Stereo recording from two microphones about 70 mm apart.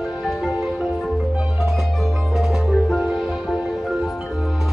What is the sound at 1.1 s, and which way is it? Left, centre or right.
Marimba, centre.